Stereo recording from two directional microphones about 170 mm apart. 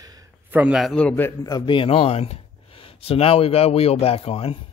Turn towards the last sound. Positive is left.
turn(degrees=35)  # may be behind; listen again after turning